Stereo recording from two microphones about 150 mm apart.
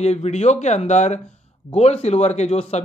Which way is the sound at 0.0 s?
45° left (ahead or behind).